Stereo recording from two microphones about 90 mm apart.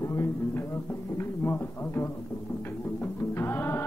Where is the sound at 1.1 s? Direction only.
25° left (ahead or behind).